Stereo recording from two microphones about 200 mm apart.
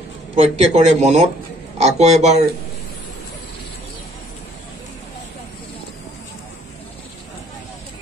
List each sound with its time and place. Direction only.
0.4 s speech: 35° right (ahead or behind)